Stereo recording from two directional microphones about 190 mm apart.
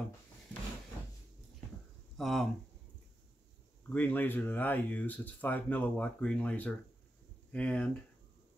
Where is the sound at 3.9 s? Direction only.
10° left (ahead or behind).